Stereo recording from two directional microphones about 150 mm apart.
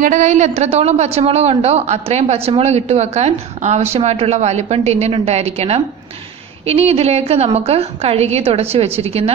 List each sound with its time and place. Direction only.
0.0 s a woman's voice: 55° right (ahead or behind)
6.9 s a woman's voice: 45° right (ahead or behind)